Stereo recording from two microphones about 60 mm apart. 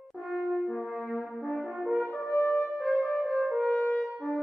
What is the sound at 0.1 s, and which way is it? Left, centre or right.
French horn, centre.